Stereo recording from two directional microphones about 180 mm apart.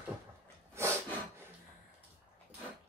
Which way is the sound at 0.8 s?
15° right (ahead or behind).